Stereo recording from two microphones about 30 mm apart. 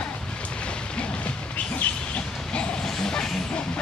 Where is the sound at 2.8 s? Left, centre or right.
Centre.